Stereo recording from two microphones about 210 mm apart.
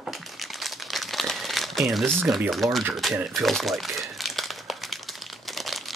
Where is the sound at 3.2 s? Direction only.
Centre (ahead or behind).